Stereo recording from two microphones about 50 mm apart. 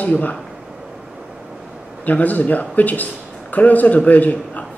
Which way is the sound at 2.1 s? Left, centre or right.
Left.